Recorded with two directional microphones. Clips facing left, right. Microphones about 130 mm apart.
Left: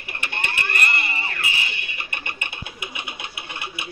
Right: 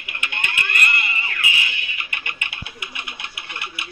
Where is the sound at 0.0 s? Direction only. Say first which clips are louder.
Even; 35° left (ahead or behind).